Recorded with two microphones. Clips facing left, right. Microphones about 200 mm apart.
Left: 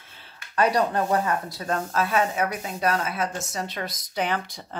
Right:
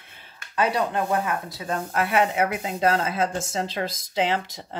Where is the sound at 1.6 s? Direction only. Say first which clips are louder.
Even; 15° right (ahead or behind).